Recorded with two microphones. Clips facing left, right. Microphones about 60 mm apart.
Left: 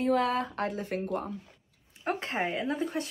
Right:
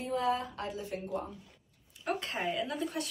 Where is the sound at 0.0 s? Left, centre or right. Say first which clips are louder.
Left 5 dB; left.